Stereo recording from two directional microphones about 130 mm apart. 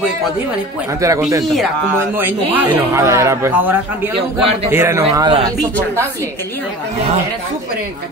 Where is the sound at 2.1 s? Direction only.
15° right (ahead or behind).